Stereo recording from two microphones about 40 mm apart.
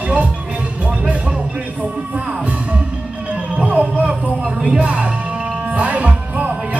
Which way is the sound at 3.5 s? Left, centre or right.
Right.